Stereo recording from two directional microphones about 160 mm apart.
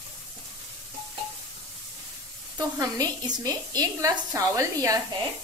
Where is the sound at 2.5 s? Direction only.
20° right (ahead or behind).